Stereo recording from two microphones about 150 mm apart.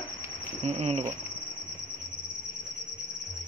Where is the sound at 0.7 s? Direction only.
45° right (ahead or behind).